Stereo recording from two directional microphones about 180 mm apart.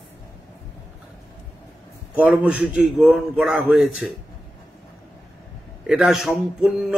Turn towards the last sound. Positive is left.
turn(degrees=0)  # may be behind; listen again after turning